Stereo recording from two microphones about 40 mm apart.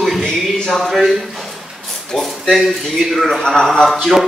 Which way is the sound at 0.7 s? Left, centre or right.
Centre.